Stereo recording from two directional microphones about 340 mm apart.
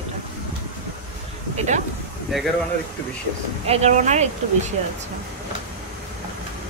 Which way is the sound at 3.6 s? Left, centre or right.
Centre.